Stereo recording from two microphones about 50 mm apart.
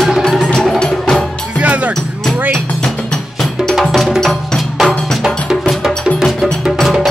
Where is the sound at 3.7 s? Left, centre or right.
Centre.